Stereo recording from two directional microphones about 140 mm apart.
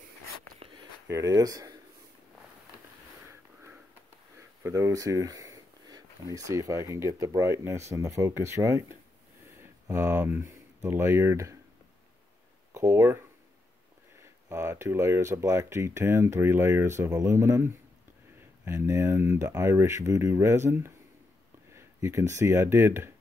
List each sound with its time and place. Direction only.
1.0 s speech: 25° right (ahead or behind)
4.4 s speech: 20° right (ahead or behind)
12.7 s speech: 20° right (ahead or behind)
14.5 s speech: 20° right (ahead or behind)